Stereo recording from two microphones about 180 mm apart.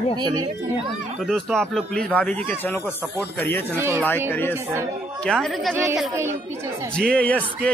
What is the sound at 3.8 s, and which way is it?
Speech, 15° right (ahead or behind).